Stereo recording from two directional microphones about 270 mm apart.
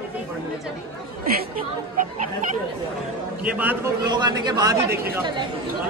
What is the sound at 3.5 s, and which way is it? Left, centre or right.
A man's voice, centre.